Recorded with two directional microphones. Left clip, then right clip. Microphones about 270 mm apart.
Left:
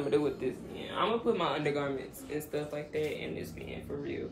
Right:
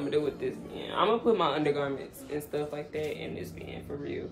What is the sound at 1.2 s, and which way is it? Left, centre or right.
Speech, centre.